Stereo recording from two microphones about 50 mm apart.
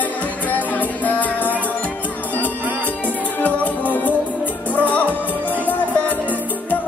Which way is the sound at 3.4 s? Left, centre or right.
Left.